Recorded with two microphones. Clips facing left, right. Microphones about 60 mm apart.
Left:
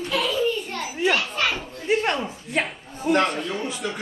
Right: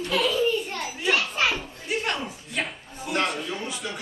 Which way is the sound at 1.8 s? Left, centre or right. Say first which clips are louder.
Left 7 dB; left.